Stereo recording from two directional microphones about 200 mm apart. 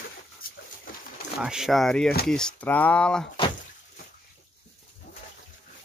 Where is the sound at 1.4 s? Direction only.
5° right (ahead or behind).